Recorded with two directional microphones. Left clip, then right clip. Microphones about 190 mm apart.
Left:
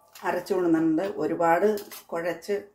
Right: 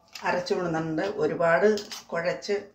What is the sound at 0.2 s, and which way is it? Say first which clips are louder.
Speech: left 1 dB; 35° left (ahead or behind).